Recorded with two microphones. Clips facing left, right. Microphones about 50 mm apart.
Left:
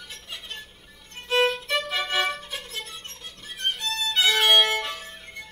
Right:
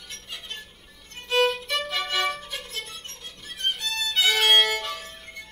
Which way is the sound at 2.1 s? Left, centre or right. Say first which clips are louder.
Left 1 dB; centre.